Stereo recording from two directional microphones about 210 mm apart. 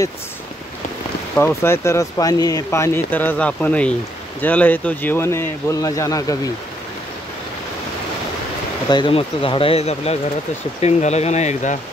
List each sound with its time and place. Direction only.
1.3 s speech: 10° left (ahead or behind)
8.8 s speech: 20° left (ahead or behind)